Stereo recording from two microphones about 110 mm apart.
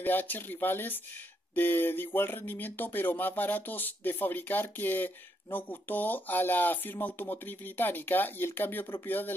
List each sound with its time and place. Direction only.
0.0 s speech: 15° left (ahead or behind)